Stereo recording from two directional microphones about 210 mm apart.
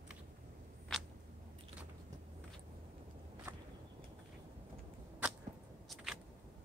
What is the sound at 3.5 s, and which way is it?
Walk, 10° right (ahead or behind).